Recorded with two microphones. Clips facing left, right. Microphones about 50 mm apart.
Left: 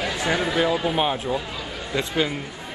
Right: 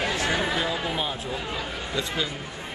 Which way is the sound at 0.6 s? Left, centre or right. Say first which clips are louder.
Left 6 dB; left.